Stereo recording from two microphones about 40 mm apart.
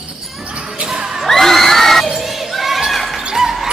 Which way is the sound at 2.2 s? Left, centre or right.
Centre.